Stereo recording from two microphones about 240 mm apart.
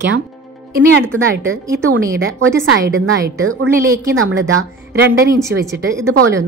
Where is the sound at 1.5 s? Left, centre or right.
Right.